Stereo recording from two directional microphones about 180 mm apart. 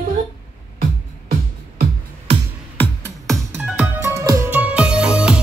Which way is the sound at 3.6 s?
10° right (ahead or behind).